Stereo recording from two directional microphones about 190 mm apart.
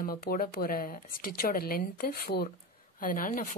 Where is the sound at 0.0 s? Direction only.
50° left (ahead or behind).